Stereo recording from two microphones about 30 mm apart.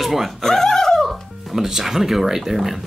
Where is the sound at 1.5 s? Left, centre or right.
Centre.